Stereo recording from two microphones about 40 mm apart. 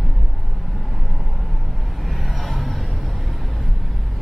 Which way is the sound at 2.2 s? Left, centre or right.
Centre.